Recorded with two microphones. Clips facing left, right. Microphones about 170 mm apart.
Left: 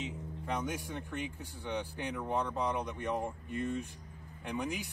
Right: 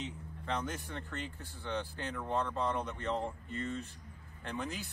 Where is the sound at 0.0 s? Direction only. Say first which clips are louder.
Left 2 dB; 10° left (ahead or behind).